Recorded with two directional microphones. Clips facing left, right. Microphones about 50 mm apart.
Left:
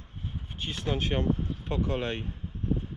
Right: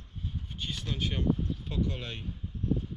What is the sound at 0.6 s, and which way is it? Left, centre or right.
Speech, left.